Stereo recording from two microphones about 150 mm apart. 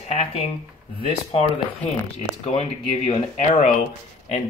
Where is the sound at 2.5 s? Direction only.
40° left (ahead or behind).